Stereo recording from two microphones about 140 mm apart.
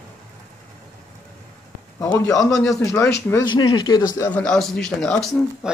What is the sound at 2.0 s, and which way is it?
Speech, 25° left (ahead or behind).